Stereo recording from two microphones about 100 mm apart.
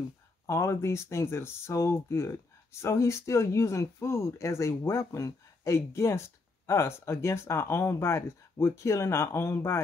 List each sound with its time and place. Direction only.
0.5 s speech: 30° left (ahead or behind)